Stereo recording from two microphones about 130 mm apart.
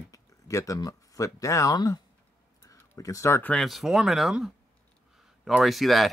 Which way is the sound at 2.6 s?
25° left (ahead or behind).